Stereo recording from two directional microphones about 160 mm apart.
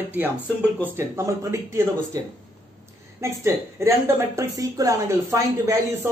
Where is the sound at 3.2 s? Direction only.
15° right (ahead or behind).